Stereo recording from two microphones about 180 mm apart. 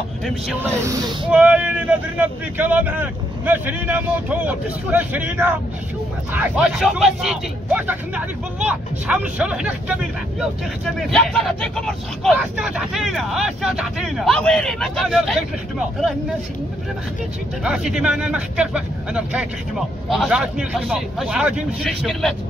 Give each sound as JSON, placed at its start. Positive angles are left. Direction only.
{"t": 0.8, "sound": "speech", "side_deg": -20}
{"t": 1.3, "sound": "speech", "side_deg": -10}
{"t": 11.0, "sound": "speech", "side_deg": 0}
{"t": 17.6, "sound": "speech", "side_deg": -5}